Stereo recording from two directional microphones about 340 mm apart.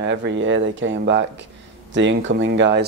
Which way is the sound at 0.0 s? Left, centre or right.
Right.